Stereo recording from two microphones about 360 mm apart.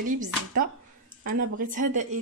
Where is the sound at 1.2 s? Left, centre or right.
Right.